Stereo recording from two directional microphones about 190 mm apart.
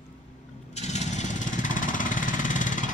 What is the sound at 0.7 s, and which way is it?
Vehicle, 35° left (ahead or behind).